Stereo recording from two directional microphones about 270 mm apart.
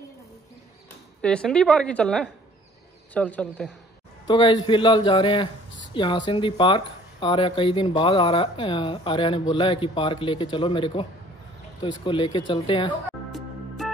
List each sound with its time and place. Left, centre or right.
1.2 s a woman's voice: centre
4.3 s a man's voice: centre
13.3 s music: centre